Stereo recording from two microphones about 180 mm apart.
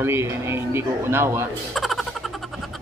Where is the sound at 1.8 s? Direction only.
Centre (ahead or behind).